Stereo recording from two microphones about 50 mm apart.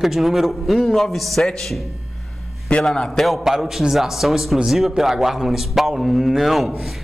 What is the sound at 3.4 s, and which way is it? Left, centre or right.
A man's voice, centre.